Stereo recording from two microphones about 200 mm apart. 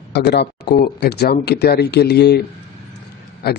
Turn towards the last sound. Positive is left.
turn(degrees=50)  # may be behind; listen again after turning